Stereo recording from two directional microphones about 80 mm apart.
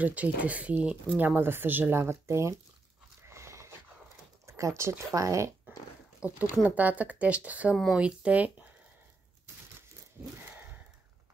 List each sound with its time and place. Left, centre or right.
0.0 s speech: centre; by 2.5 s right
3.2 s a sound: right
4.5 s speech: right
6.2 s speech: right
7.7 s speech: centre
8.0 s speech: centre